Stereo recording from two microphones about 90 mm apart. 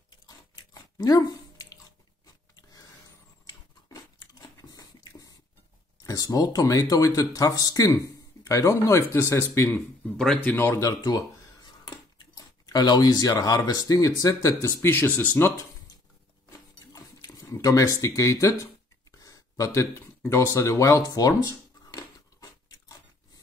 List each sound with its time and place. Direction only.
0.9 s a sound: 45° left (ahead or behind)
3.4 s biting: 45° left (ahead or behind)
6.0 s speech: 40° left (ahead or behind)
10.1 s speech: 5° left (ahead or behind)
10.4 s speech: 25° left (ahead or behind)
11.0 s speech: 50° left (ahead or behind); by 15.2 s 25° left (ahead or behind)
16.4 s a sound: 40° left (ahead or behind)
20.2 s speech: 35° left (ahead or behind)
21.9 s a sound: 45° left (ahead or behind)